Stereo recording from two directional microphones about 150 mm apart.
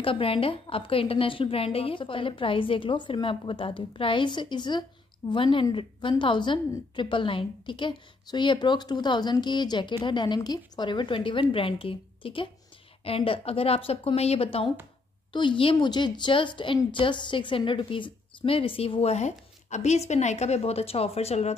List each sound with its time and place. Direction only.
0.0 s a woman's voice: 35° left (ahead or behind)